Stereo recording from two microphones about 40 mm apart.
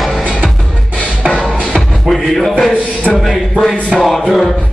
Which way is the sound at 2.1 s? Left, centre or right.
Centre.